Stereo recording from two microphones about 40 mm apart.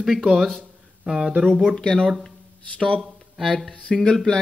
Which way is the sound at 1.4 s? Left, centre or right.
Centre.